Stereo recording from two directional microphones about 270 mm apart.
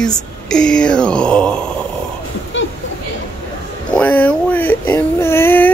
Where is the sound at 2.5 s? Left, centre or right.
Left.